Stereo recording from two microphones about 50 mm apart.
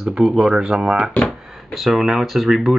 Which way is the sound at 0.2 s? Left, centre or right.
Centre.